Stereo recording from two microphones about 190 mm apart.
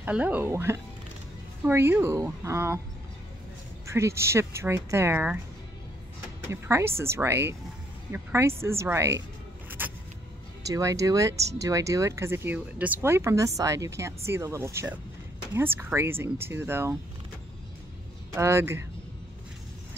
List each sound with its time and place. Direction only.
0.0 s speech: 10° right (ahead or behind)
3.8 s speech: 15° right (ahead or behind)
6.5 s speech: 15° right (ahead or behind)
9.7 s vehicle: 10° right (ahead or behind)
10.6 s speech: 15° right (ahead or behind)
18.3 s speech: 15° right (ahead or behind)